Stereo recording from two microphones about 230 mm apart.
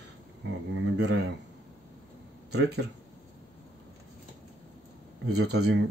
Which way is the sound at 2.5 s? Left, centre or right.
Right.